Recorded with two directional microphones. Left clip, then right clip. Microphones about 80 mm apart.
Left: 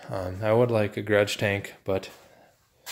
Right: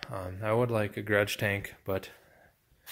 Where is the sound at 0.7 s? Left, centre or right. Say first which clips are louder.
Left 5 dB; centre.